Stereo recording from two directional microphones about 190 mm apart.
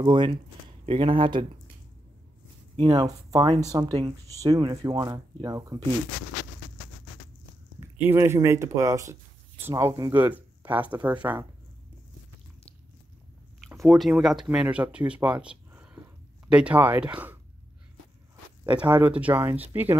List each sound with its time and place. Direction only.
0.0 s speech: 25° right (ahead or behind)
2.7 s speech: 25° right (ahead or behind)
8.0 s speech: 10° right (ahead or behind)
13.7 s speech: centre (ahead or behind)
15.4 s a sound: 5° right (ahead or behind)
16.4 s speech: 5° right (ahead or behind)
18.7 s speech: 10° right (ahead or behind)